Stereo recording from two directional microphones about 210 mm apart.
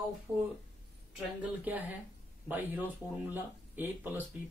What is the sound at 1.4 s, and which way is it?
Speech, 10° right (ahead or behind).